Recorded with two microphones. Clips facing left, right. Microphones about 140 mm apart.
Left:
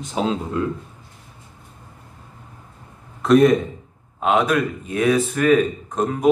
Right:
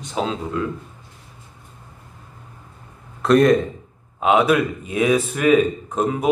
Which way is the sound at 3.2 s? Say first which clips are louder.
Even; centre (ahead or behind).